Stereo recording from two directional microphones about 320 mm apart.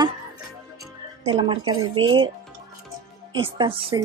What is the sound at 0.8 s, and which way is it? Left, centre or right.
Music, centre.